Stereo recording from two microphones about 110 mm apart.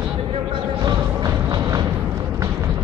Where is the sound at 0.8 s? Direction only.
35° right (ahead or behind).